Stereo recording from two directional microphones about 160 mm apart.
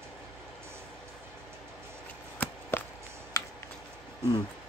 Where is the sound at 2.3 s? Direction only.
10° left (ahead or behind).